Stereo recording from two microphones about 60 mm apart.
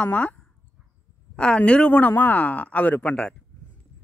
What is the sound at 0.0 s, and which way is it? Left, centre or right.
Speech, left.